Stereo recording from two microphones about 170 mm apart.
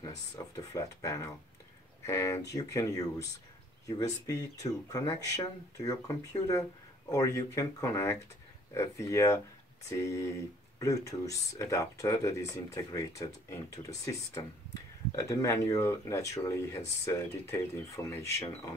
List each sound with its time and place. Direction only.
0.6 s speech: 20° left (ahead or behind)
4.3 s speech: 20° left (ahead or behind)